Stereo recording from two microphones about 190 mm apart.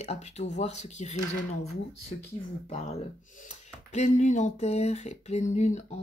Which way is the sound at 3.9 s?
35° left (ahead or behind).